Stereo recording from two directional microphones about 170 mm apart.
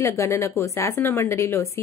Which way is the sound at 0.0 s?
15° left (ahead or behind).